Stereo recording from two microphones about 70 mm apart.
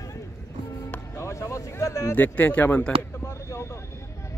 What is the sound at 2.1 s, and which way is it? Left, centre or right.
Speech, left.